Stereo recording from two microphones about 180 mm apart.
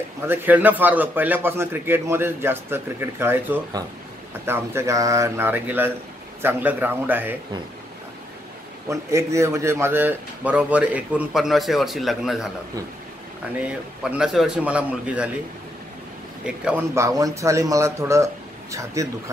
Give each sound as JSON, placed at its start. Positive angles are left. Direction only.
{"t": 0.3, "sound": "speech", "side_deg": -10}
{"t": 8.8, "sound": "speech", "side_deg": -15}
{"t": 13.6, "sound": "speech", "side_deg": -5}
{"t": 16.4, "sound": "speech", "side_deg": -5}